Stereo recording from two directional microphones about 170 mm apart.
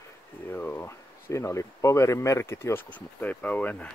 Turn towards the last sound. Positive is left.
turn(degrees=10)  # may be behind; listen again after turning